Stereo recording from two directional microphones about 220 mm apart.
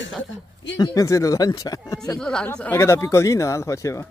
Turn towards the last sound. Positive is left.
turn(degrees=15)  # may be behind; listen again after turning